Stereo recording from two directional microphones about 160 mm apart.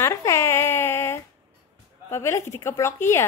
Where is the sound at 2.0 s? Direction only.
15° left (ahead or behind).